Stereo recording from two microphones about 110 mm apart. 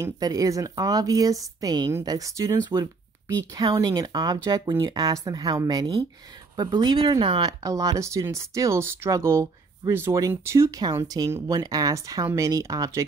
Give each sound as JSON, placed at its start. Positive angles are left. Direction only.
{"t": 0.0, "sound": "speech", "side_deg": -35}
{"t": 7.6, "sound": "speech", "side_deg": -30}